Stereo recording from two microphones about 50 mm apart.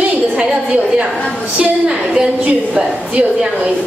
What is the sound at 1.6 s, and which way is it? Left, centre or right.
A woman's voice, centre.